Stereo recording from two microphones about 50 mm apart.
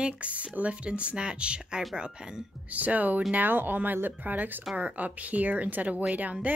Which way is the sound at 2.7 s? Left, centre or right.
Right.